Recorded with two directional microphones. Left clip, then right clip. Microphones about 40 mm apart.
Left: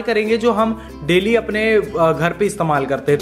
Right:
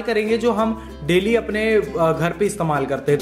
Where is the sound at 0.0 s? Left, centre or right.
Left.